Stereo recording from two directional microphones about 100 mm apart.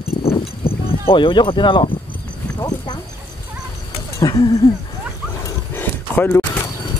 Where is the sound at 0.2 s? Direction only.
75° left (ahead or behind); by 1.9 s 55° left (ahead or behind).